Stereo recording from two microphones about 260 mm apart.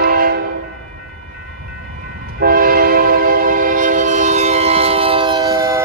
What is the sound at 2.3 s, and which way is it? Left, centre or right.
Train, right.